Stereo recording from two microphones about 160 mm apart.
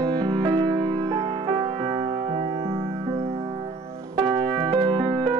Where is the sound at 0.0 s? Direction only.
25° right (ahead or behind).